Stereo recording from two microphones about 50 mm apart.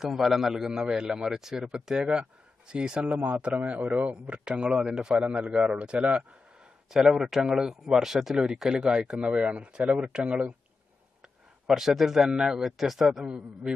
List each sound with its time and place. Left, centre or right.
0.0 s speech: centre
3.2 s a man's voice: right; by 5.2 s centre
5.2 s a man's voice: right
6.9 s speech: centre
11.6 s speech: centre
13.7 s a man's voice: centre